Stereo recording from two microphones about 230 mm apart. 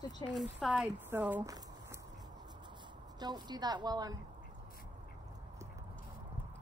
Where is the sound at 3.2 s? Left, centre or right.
Centre.